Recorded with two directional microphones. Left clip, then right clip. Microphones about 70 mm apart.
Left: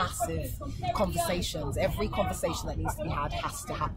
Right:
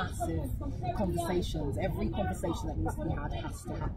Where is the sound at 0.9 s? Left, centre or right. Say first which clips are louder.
Left 4 dB; centre.